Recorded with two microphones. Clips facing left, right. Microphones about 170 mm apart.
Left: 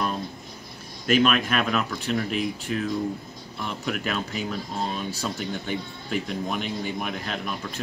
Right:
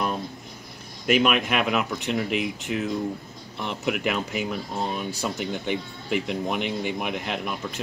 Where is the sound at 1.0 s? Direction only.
15° right (ahead or behind).